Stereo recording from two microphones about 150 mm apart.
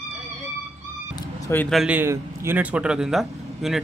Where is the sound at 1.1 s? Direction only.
20° left (ahead or behind).